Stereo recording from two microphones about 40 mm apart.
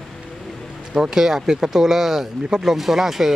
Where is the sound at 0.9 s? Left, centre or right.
Centre.